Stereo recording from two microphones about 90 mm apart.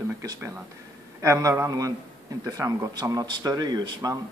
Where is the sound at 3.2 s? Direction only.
50° right (ahead or behind).